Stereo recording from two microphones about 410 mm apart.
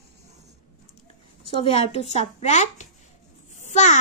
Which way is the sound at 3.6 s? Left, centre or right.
Centre.